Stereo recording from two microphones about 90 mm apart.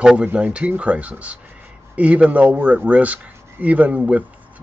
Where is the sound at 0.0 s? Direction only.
10° right (ahead or behind).